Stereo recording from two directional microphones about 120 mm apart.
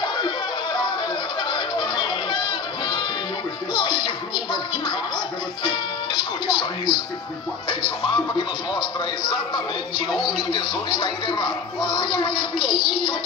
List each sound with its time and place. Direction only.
1.5 s a sound: 40° left (ahead or behind)
3.7 s music: 40° left (ahead or behind)
5.6 s music: 40° left (ahead or behind)
10.2 s speech: 40° left (ahead or behind)